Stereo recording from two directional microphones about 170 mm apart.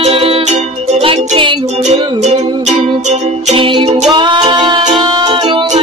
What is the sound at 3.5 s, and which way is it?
Music, 30° right (ahead or behind).